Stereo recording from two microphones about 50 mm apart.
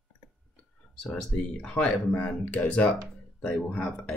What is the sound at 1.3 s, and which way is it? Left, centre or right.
Speech, left.